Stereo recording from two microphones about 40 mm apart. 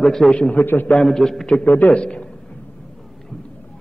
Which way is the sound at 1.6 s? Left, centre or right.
Left.